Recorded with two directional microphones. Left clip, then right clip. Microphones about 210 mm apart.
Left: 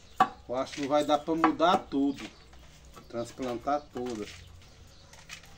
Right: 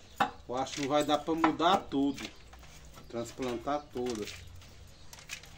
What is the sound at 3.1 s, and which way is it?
Speech, 15° right (ahead or behind).